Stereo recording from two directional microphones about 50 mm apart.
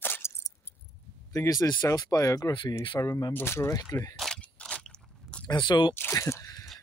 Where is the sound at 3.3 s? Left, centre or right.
Left.